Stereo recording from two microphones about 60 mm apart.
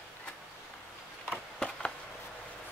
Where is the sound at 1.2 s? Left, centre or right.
Centre.